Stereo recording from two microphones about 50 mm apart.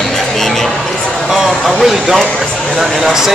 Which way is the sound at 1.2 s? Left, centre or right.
Centre.